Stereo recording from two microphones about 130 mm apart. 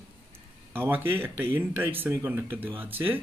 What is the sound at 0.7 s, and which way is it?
Speech, 15° right (ahead or behind).